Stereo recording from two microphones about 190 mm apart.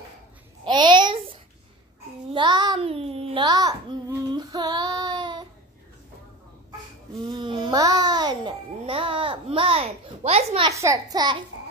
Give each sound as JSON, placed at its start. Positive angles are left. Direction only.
{"t": 0.7, "sound": "a sound", "side_deg": -25}
{"t": 2.3, "sound": "child singing", "side_deg": -25}
{"t": 7.2, "sound": "babbling", "side_deg": -25}
{"t": 10.7, "sound": "a child's voice", "side_deg": -15}